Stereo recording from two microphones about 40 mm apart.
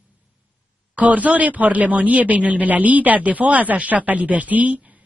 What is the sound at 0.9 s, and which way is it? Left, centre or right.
Speech, right.